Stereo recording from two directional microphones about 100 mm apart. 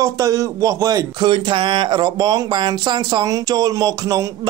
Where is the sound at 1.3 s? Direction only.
55° right (ahead or behind).